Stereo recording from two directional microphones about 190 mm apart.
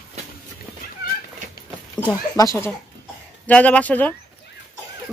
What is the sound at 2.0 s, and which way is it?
A woman's voice, 20° left (ahead or behind).